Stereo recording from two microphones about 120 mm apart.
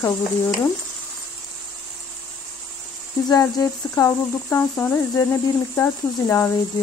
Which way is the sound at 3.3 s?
30° left (ahead or behind).